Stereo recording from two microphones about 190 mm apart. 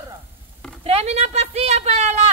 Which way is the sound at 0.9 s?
35° right (ahead or behind).